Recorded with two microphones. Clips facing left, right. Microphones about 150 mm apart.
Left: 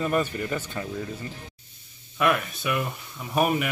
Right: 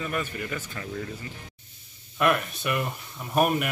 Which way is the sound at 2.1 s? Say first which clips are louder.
Even; centre (ahead or behind).